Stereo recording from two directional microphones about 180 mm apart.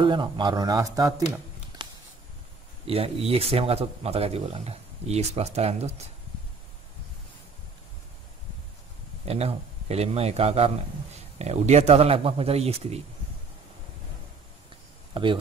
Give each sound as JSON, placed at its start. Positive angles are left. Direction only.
{"t": 0.0, "sound": "speech", "side_deg": -25}
{"t": 1.8, "sound": "a sound", "side_deg": -25}
{"t": 2.9, "sound": "speech", "side_deg": -35}
{"t": 9.2, "sound": "speech", "side_deg": -35}
{"t": 15.2, "sound": "speech", "side_deg": -30}